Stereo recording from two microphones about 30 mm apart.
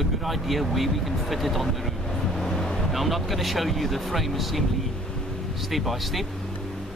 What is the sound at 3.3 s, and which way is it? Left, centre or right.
Speech, centre.